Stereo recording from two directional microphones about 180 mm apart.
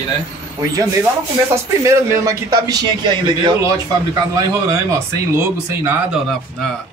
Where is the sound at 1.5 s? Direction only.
15° right (ahead or behind).